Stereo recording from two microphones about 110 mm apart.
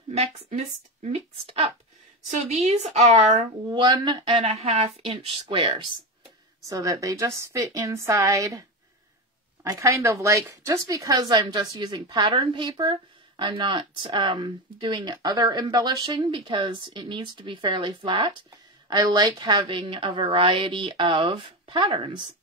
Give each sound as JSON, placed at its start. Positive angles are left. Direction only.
{"t": 0.1, "sound": "speech", "side_deg": -75}
{"t": 1.1, "sound": "speech", "side_deg": -55}
{"t": 2.3, "sound": "a woman's voice", "side_deg": -90}
{"t": 3.6, "sound": "speech", "side_deg": -45}
{"t": 6.7, "sound": "a woman's voice", "side_deg": -30}
{"t": 11.1, "sound": "a woman's voice", "side_deg": -40}